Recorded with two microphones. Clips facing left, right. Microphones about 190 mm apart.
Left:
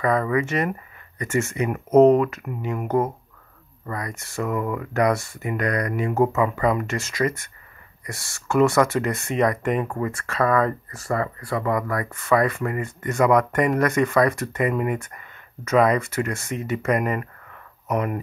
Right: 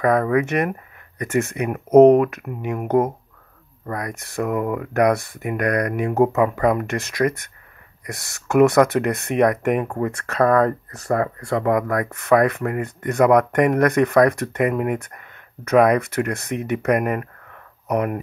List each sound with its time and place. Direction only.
0.0 s speech: 60° right (ahead or behind)
3.9 s speech: 60° right (ahead or behind)